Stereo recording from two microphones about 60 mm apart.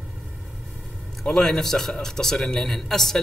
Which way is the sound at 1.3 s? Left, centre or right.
Centre.